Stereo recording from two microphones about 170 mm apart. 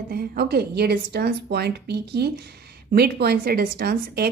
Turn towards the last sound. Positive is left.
turn(degrees=-65)  # may be behind; listen again after turning